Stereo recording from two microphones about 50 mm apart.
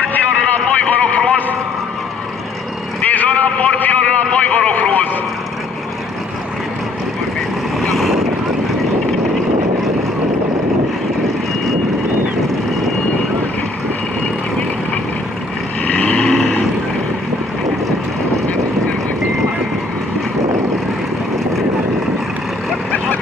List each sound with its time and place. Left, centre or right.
0.4 s a sound: left
3.0 s vehicle: left
7.8 s vehicle: centre
15.9 s vehicle: left